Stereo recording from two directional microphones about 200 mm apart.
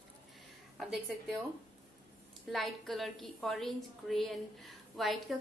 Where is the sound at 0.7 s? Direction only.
Centre (ahead or behind).